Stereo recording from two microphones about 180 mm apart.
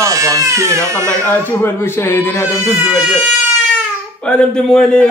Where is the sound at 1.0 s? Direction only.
10° left (ahead or behind).